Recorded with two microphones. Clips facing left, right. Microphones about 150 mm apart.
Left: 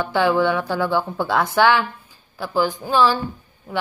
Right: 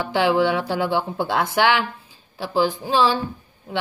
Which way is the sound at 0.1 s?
20° right (ahead or behind).